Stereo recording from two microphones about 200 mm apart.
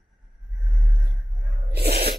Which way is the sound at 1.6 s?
50° right (ahead or behind).